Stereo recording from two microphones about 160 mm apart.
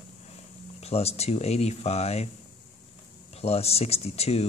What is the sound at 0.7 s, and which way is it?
Speech, 40° left (ahead or behind).